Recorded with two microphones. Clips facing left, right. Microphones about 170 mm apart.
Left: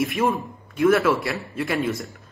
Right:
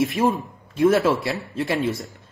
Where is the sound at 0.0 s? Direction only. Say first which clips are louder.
Right 2 dB; 20° right (ahead or behind).